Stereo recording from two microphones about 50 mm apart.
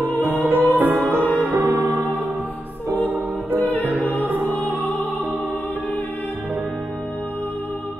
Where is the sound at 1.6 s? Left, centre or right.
Right.